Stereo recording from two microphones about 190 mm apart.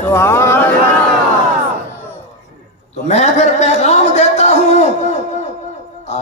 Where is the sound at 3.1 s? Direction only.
35° left (ahead or behind).